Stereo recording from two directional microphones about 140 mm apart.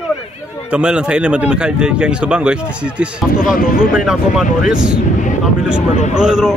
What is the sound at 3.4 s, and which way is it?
Speech, 85° left.